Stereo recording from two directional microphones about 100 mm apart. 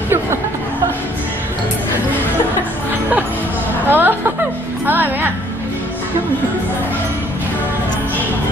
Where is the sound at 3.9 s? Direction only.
20° right (ahead or behind).